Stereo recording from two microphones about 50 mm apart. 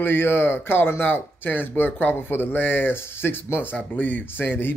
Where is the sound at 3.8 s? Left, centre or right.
Left.